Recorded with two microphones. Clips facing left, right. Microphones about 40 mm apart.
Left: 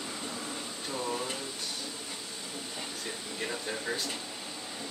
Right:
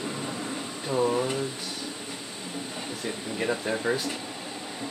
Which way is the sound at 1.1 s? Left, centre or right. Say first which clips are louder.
Right 8 dB; right.